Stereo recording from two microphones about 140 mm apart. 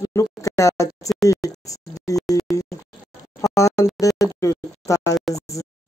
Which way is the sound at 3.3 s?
20° left (ahead or behind).